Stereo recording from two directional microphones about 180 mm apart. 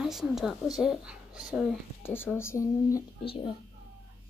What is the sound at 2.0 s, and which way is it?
Speech, 10° left (ahead or behind).